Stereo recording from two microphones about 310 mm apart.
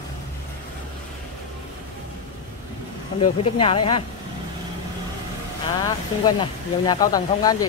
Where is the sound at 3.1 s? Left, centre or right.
Centre.